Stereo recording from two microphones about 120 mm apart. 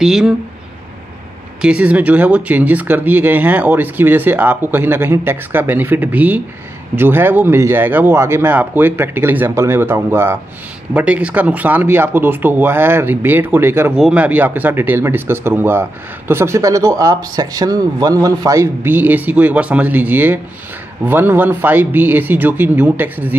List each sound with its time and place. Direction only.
0.0 s speech: 5° right (ahead or behind)
1.6 s speech: 10° right (ahead or behind)
13.9 s speech: 10° right (ahead or behind)